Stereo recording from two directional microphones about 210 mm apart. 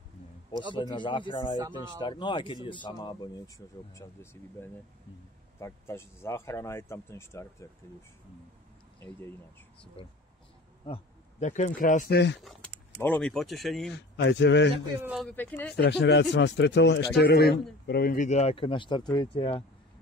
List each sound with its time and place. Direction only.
0.7 s speech: 20° left (ahead or behind)
10.0 s speech: 25° left (ahead or behind)
12.4 s speech: centre (ahead or behind)
14.1 s speech: 55° left (ahead or behind)
15.0 s speech: centre (ahead or behind)
15.3 s speech: 10° left (ahead or behind)
15.7 s speech: 50° left (ahead or behind); by 19.6 s 25° left (ahead or behind)